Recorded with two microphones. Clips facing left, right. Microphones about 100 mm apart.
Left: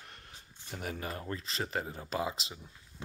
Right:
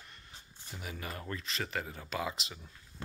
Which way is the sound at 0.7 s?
45° left (ahead or behind).